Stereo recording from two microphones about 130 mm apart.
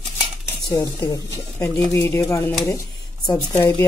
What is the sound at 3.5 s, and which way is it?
Speech, 20° left (ahead or behind).